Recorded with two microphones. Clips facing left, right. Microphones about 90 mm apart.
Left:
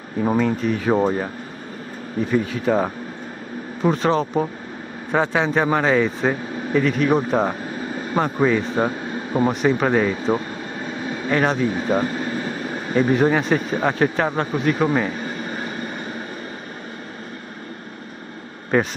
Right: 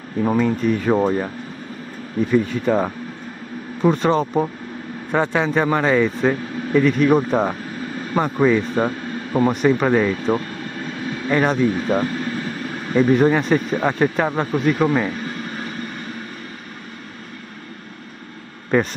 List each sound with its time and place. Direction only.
0.2 s speech: 5° left (ahead or behind)
2.3 s a man's voice: centre (ahead or behind)
11.7 s speech: 15° left (ahead or behind)
13.1 s speech: centre (ahead or behind)
18.7 s speech: centre (ahead or behind)